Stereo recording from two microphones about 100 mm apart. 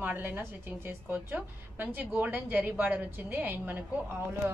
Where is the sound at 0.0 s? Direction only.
15° right (ahead or behind).